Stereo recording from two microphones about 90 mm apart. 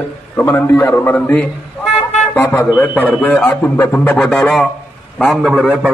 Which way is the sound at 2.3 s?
25° left (ahead or behind).